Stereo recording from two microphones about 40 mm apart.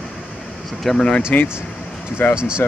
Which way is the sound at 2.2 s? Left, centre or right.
Left.